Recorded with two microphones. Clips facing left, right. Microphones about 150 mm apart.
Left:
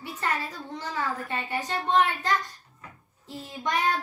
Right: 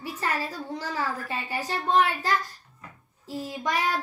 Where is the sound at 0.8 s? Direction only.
10° right (ahead or behind).